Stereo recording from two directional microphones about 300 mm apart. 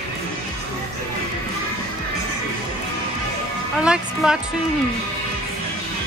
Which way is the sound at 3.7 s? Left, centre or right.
Centre.